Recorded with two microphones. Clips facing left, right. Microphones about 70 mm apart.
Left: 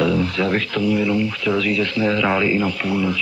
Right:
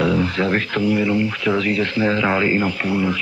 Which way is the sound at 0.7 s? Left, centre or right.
Right.